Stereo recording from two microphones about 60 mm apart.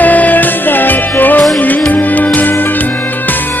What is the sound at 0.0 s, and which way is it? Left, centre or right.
Music, left.